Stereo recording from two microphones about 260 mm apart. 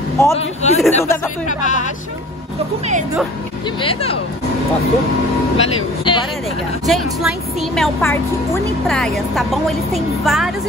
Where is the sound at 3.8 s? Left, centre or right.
Left.